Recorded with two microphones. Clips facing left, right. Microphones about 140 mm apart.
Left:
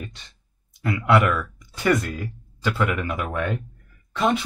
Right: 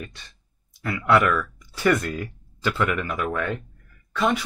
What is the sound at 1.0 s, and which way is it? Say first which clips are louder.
Speech: even; 15° left (ahead or behind).